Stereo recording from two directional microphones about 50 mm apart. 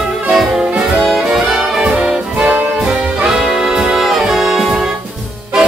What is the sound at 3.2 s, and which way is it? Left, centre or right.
Music, centre.